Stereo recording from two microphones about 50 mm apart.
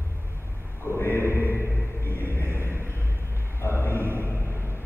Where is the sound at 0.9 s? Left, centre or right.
Left.